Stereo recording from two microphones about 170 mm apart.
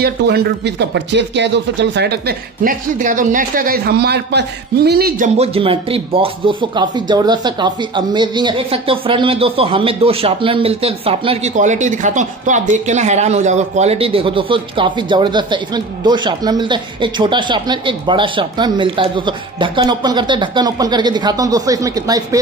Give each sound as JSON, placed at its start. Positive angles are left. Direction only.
{"t": 0.0, "sound": "speech", "side_deg": -75}
{"t": 5.4, "sound": "speech", "side_deg": -35}